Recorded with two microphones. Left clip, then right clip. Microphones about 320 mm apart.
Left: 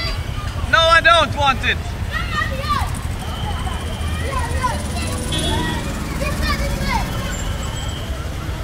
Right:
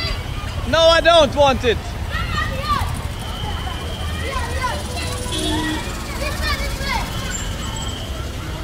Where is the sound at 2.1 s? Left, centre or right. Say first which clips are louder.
Left 1 dB; left.